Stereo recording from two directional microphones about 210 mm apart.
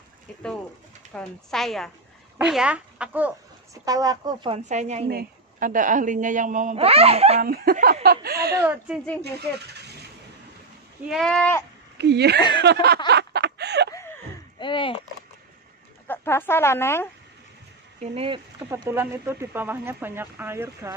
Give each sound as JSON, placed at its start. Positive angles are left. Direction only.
{"t": 1.1, "sound": "speech", "side_deg": 0}
{"t": 4.6, "sound": "a woman's voice", "side_deg": -35}
{"t": 5.0, "sound": "a woman's voice", "side_deg": -45}
{"t": 7.4, "sound": "speech", "side_deg": -45}
{"t": 8.6, "sound": "speech", "side_deg": -5}
{"t": 9.2, "sound": "speech", "side_deg": -50}
{"t": 11.1, "sound": "speech", "side_deg": 0}
{"t": 12.0, "sound": "speech", "side_deg": -55}
{"t": 12.4, "sound": "speech", "side_deg": 20}
{"t": 13.1, "sound": "a sound", "side_deg": -50}
{"t": 14.6, "sound": "speech", "side_deg": 25}
{"t": 16.1, "sound": "speech", "side_deg": 10}
{"t": 18.0, "sound": "speech", "side_deg": -25}
{"t": 18.6, "sound": "speech", "side_deg": -10}